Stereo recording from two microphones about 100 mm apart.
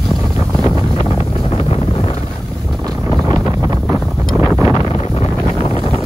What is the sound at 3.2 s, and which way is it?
Wind noise, 35° right (ahead or behind).